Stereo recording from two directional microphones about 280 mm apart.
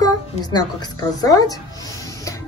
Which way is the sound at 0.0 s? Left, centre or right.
Centre.